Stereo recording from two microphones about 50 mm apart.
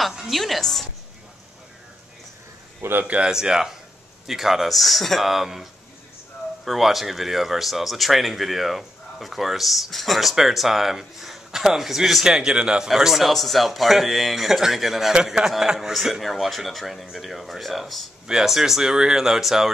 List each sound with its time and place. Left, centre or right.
0.1 s speech: centre
2.8 s a man's voice: right
3.3 s speech: centre
12.9 s speech: centre